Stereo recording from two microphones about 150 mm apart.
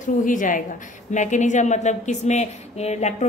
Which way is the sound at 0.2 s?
60° left (ahead or behind).